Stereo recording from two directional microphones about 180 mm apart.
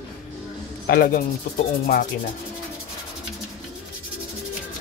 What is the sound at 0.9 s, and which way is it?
Speech, 55° left (ahead or behind).